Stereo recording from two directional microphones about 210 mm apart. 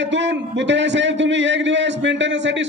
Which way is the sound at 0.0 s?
60° right (ahead or behind).